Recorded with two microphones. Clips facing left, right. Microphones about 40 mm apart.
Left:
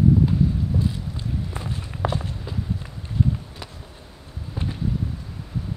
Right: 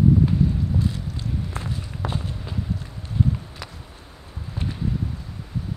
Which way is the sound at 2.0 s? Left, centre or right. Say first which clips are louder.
Left 4 dB; centre.